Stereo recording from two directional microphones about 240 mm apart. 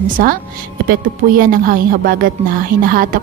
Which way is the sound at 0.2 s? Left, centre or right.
Right.